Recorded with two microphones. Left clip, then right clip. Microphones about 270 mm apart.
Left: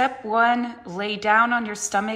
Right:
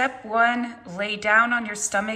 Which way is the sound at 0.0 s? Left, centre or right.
Centre.